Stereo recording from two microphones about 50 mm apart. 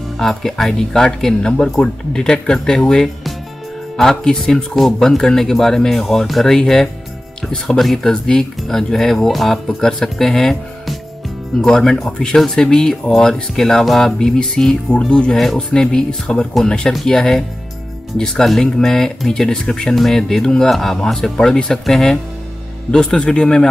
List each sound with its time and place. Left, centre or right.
0.2 s speech: centre
15.3 s speech: centre